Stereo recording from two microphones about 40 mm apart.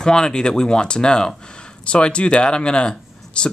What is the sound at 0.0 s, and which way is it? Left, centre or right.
Speech, centre.